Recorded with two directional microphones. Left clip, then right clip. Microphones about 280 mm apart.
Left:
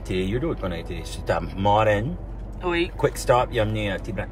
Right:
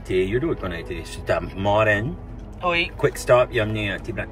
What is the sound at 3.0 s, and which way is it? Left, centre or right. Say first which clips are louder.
Speech: right 3 dB; centre.